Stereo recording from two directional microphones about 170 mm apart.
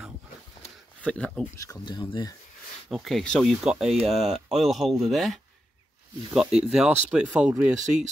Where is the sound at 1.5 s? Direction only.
20° left (ahead or behind).